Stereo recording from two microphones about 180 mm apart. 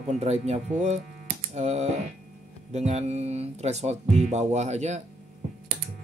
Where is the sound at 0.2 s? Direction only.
35° right (ahead or behind).